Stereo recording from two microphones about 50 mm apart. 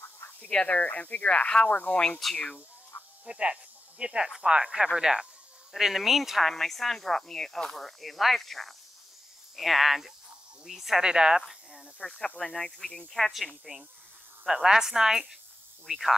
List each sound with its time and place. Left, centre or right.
0.7 s speech: left
2.9 s a sound: left
3.3 s speech: right
12.0 s speech: centre
13.7 s speech: right
14.4 s speech: centre